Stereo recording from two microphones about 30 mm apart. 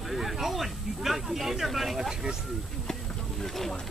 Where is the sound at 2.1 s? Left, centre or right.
Centre.